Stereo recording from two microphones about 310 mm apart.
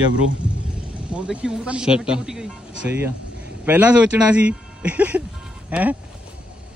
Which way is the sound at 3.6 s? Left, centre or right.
Centre.